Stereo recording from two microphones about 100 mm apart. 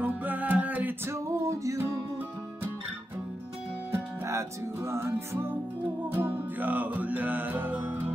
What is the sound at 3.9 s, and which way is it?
Music, 30° right (ahead or behind).